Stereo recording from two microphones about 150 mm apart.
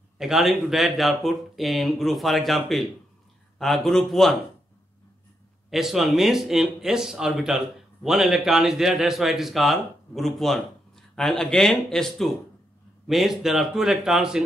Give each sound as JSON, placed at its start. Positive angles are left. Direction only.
{"t": 0.2, "sound": "speech", "side_deg": 0}
{"t": 5.7, "sound": "speech", "side_deg": 0}